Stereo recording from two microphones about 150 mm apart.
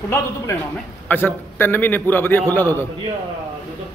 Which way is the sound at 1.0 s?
15° left (ahead or behind).